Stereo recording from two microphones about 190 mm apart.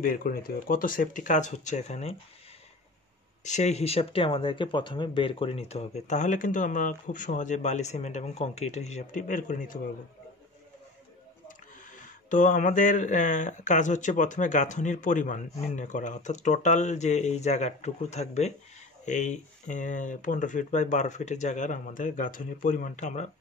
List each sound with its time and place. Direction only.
0.0 s speech: 50° left (ahead or behind)
3.4 s speech: 35° left (ahead or behind)
11.4 s speech: 40° left (ahead or behind)